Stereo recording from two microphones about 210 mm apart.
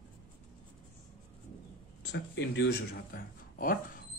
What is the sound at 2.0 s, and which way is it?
A man's voice, 55° left (ahead or behind).